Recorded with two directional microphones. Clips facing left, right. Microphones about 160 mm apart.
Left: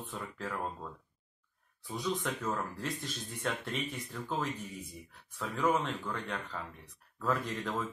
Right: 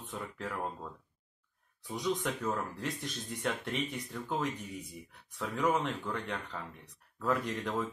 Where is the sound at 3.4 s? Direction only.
20° right (ahead or behind).